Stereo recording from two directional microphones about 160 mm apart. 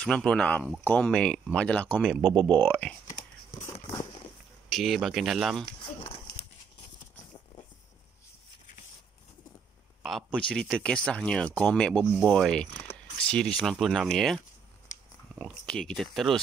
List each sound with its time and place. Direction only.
0.0 s speech: 5° left (ahead or behind)
2.0 s speech: 5° right (ahead or behind)
2.2 s speech: 25° right (ahead or behind)
2.5 s speech: 10° left (ahead or behind)
4.6 s speech: centre (ahead or behind)
10.0 s speech: centre (ahead or behind)